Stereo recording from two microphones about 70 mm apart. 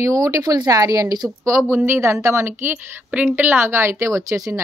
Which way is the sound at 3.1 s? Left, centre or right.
Right.